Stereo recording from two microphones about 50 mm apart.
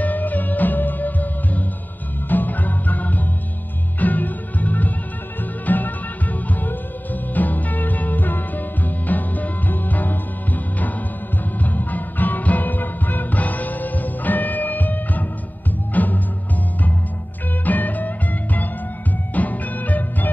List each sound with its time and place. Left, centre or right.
0.0 s music: left
7.3 s music: left
17.6 s music: left